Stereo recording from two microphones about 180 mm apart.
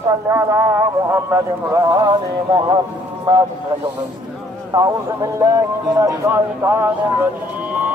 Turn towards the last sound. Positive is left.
turn(degrees=-10)  # may be behind; listen again after turning